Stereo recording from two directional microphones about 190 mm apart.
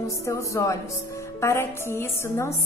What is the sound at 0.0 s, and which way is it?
A woman's voice, 15° left (ahead or behind).